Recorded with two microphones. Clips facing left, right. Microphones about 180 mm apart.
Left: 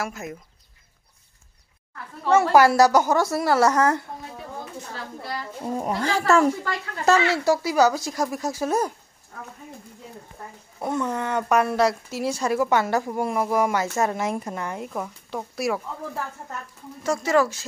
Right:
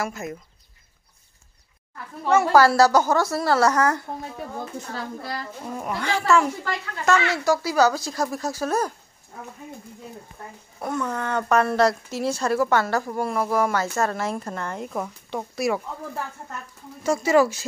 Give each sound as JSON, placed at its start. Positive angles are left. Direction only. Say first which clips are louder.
{"t": 0.0, "sound": "speech", "louder": "right 2 dB", "side_deg": 5}
{"t": 2.3, "sound": "speech", "louder": "even", "side_deg": 20}
{"t": 5.6, "sound": "speech", "louder": "left 6 dB", "side_deg": 30}
{"t": 10.8, "sound": "a woman's voice", "louder": "left 1 dB", "side_deg": 20}
{"t": 14.9, "sound": "speech", "louder": "right 1 dB", "side_deg": 0}